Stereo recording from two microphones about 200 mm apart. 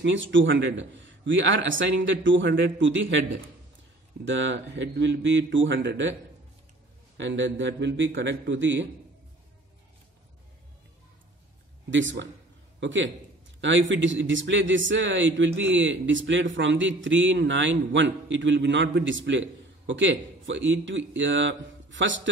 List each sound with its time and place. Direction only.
0.0 s a man's voice: 70° right (ahead or behind)
4.4 s a man's voice: 65° right (ahead or behind)
7.2 s a man's voice: 65° right (ahead or behind)
11.9 s a man's voice: 70° right (ahead or behind)